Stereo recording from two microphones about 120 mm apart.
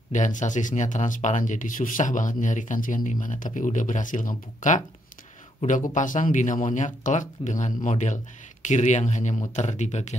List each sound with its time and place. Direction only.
0.1 s speech: 90° left; by 10.1 s 70° left (ahead or behind)